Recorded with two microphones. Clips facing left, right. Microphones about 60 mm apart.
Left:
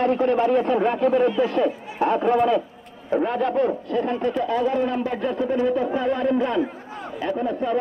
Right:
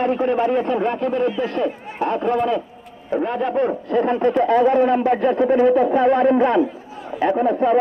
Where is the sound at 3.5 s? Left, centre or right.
Right.